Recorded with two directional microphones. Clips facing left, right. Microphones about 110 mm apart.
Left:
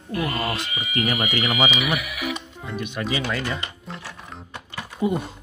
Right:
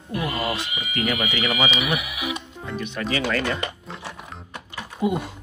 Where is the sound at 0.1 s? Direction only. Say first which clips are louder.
Left 1 dB; 15° right (ahead or behind).